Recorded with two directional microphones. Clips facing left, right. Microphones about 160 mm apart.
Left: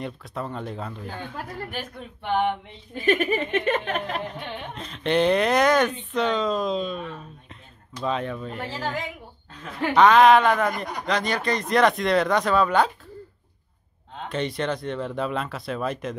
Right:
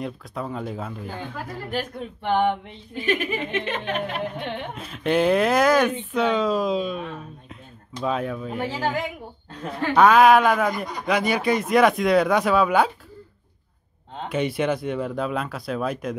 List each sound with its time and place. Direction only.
0.0 s speech: centre (ahead or behind)
3.1 s a sound: 50° left (ahead or behind)
4.7 s speech: 5° right (ahead or behind)
14.3 s speech: 5° right (ahead or behind)